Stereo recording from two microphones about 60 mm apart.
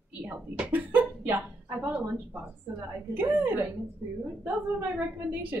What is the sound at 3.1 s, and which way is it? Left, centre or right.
Speech, right.